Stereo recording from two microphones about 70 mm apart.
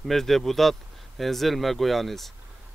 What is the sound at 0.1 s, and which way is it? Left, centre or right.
Speech, centre.